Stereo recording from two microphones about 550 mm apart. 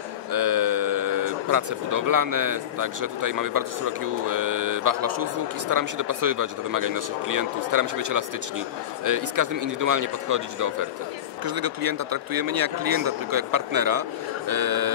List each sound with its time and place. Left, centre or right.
0.3 s speech: right